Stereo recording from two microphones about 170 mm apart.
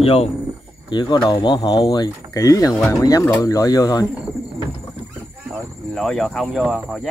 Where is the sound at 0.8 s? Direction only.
25° left (ahead or behind).